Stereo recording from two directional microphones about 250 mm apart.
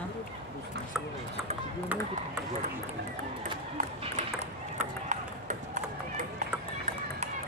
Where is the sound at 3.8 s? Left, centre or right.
Right.